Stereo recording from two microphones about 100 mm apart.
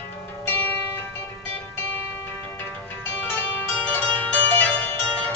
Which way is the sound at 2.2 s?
25° left (ahead or behind).